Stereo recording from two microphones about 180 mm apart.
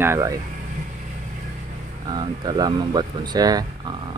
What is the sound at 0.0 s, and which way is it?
Speech, 15° right (ahead or behind).